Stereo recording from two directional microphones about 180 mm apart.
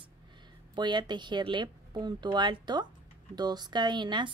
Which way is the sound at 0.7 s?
25° right (ahead or behind).